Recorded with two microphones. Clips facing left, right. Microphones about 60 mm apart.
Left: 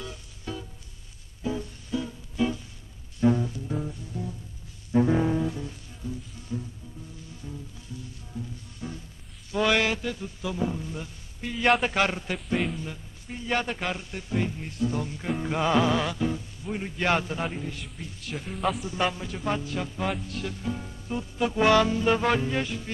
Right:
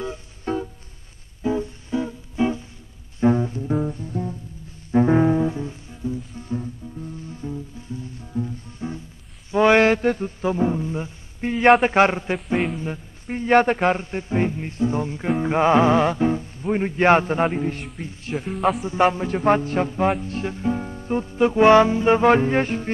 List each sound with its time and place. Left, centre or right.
0.0 s music: right
9.5 s mantra: right
11.8 s a man's voice: right
18.3 s speech: centre
18.8 s a man's voice: right